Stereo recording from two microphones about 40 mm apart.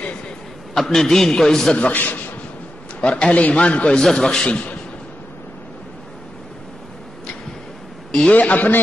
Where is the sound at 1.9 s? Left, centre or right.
Left.